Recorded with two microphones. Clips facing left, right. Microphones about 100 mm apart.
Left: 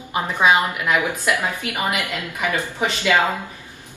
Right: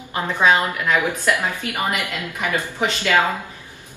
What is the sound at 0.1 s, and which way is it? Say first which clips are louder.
A woman's voice: even; 15° left (ahead or behind).